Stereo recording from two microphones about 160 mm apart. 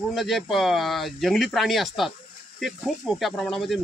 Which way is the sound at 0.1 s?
Centre (ahead or behind).